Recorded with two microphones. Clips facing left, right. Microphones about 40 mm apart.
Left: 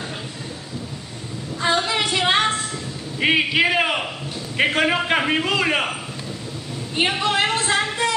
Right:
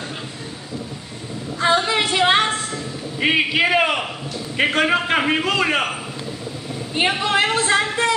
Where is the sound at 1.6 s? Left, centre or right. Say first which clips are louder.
Right 3 dB; centre.